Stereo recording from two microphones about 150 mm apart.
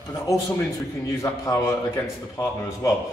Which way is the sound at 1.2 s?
20° left (ahead or behind).